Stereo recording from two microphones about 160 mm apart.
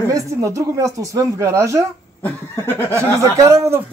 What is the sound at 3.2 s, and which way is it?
Speech, 20° right (ahead or behind).